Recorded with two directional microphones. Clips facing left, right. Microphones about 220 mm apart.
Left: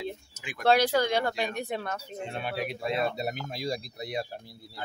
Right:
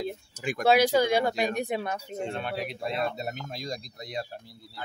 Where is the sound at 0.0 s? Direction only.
45° right (ahead or behind).